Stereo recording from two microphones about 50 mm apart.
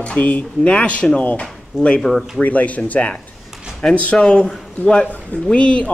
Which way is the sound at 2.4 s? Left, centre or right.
Left.